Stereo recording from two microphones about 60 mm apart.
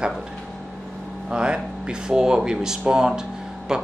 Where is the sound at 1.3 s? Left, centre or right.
Centre.